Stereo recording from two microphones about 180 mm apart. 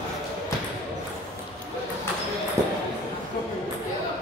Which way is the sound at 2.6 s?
15° right (ahead or behind).